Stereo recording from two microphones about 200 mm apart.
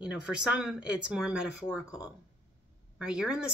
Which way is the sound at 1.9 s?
15° left (ahead or behind).